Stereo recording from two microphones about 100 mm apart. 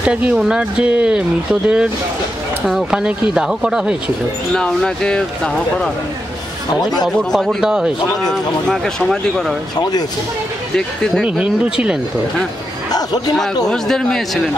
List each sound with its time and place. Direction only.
0.0 s speech: 10° right (ahead or behind)
4.6 s speech: 5° left (ahead or behind)
6.8 s speech: 45° left (ahead or behind)
7.2 s speech: centre (ahead or behind)
8.3 s speech: 5° left (ahead or behind)
9.8 s speech: 40° left (ahead or behind)
11.2 s speech: 10° right (ahead or behind)
13.7 s speech: 5° left (ahead or behind)